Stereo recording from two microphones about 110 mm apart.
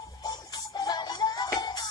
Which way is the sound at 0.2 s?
40° left (ahead or behind).